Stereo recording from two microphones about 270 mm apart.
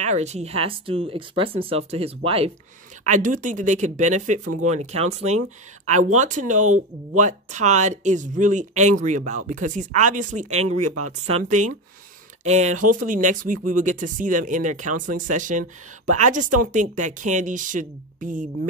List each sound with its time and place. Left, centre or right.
0.0 s speech: right